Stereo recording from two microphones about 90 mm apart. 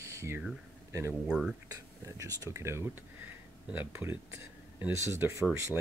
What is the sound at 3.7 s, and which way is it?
Speech, 20° right (ahead or behind).